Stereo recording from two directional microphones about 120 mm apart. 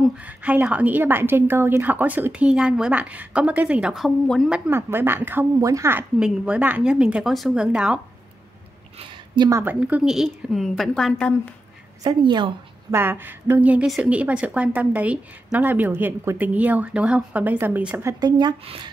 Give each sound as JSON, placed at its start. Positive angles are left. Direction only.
{"t": 0.2, "sound": "a woman's voice", "side_deg": -15}
{"t": 4.6, "sound": "speech", "side_deg": -20}
{"t": 6.1, "sound": "a woman's voice", "side_deg": -10}
{"t": 9.5, "sound": "speech", "side_deg": -25}
{"t": 9.8, "sound": "a woman's voice", "side_deg": -10}
{"t": 12.0, "sound": "a woman's voice", "side_deg": -40}
{"t": 12.9, "sound": "a woman's voice", "side_deg": -20}